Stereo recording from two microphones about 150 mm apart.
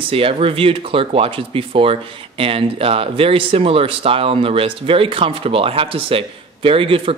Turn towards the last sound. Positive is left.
turn(degrees=-35)  # may be behind; listen again after turning